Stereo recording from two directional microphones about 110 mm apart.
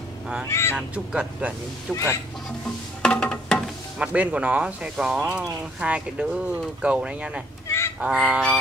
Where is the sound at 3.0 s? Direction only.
10° left (ahead or behind).